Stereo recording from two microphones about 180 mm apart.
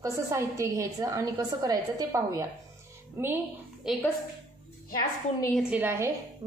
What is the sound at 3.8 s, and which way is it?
Speech, centre (ahead or behind).